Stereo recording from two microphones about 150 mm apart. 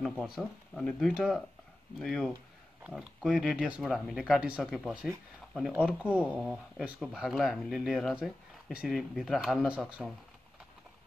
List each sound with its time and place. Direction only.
0.0 s speech: 5° left (ahead or behind)